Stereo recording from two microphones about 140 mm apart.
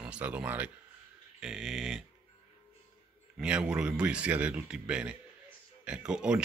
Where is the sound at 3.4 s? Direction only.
5° right (ahead or behind).